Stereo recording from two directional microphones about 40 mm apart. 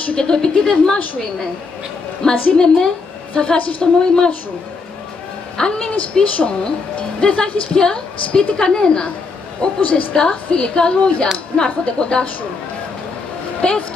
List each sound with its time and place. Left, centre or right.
0.1 s a woman's voice: centre
2.2 s a woman's voice: centre
5.6 s a woman's voice: left
9.6 s a woman's voice: left
10.1 s a woman's voice: centre
13.6 s a woman's voice: left